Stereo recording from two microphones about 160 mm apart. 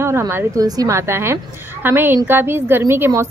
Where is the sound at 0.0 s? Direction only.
15° right (ahead or behind).